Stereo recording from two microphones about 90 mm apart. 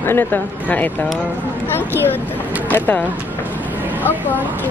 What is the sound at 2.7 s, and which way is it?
Speech, 20° left (ahead or behind).